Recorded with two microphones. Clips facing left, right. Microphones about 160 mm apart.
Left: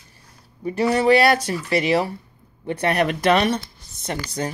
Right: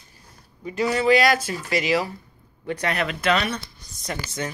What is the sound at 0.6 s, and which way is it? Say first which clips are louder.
A woman's voice: left 3 dB; 35° left (ahead or behind).